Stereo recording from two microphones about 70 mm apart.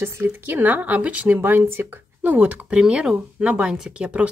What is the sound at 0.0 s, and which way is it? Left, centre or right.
Speech, right.